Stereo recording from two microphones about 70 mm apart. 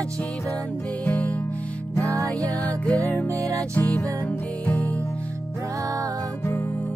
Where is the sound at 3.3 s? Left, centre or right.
Right.